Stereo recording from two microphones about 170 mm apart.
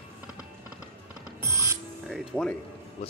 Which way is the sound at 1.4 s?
20° right (ahead or behind).